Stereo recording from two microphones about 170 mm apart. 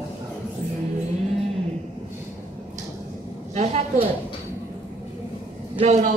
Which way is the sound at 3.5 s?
40° right (ahead or behind).